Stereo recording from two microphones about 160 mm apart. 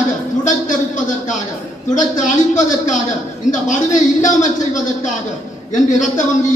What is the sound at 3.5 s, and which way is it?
Speech, 50° left (ahead or behind).